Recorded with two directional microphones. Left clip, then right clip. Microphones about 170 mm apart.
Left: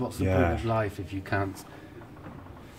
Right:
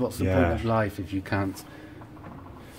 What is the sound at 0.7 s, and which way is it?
Speech, 50° right (ahead or behind).